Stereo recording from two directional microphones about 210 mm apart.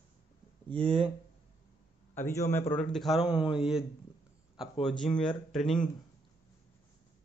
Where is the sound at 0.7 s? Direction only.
25° right (ahead or behind).